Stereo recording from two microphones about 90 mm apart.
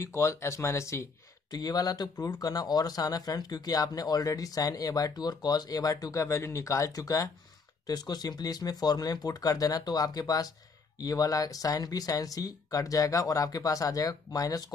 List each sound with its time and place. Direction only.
0.0 s speech: 35° left (ahead or behind)
1.5 s speech: 45° left (ahead or behind)